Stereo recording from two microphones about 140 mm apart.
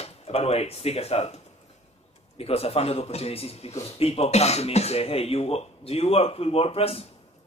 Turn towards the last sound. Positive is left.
turn(degrees=45)  # may be behind; listen again after turning